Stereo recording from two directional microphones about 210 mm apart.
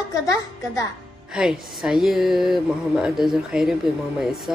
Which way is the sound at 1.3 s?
Centre (ahead or behind).